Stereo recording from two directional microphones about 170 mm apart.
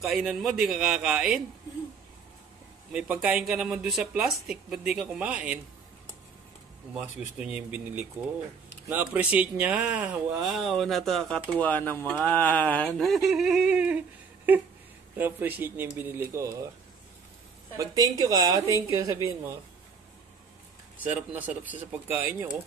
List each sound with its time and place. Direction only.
0.0 s speech: 5° right (ahead or behind)
2.9 s speech: 5° right (ahead or behind)
6.9 s speech: 5° right (ahead or behind)
15.1 s speech: 10° right (ahead or behind)
17.7 s a woman's voice: 20° right (ahead or behind)
21.0 s speech: 10° right (ahead or behind)